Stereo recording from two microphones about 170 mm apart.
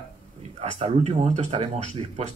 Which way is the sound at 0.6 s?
40° right (ahead or behind).